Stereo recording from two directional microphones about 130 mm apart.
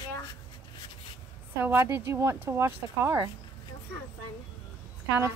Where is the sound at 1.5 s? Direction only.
20° right (ahead or behind).